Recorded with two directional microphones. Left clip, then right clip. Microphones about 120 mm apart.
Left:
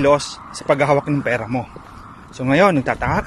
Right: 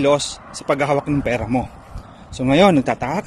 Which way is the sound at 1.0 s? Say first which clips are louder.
Even; 30° right (ahead or behind).